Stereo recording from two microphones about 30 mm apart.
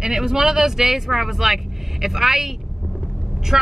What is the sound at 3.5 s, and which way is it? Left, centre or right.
Speech, centre.